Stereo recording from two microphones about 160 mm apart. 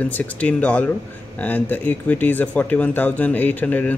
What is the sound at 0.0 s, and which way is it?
Speech, 10° left (ahead or behind).